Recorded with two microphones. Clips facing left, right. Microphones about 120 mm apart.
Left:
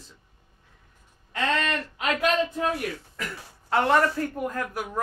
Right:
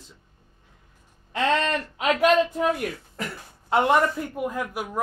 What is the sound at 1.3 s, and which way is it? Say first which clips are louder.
Speech: right 3 dB; 30° right (ahead or behind).